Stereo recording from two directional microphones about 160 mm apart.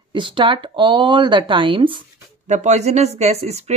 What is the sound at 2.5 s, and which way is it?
Speech, 45° right (ahead or behind).